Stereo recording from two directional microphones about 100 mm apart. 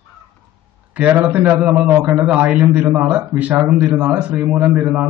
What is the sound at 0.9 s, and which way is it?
A man's voice, 15° right (ahead or behind).